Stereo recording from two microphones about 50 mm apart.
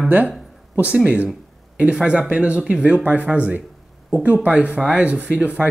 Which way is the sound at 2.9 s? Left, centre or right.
Right.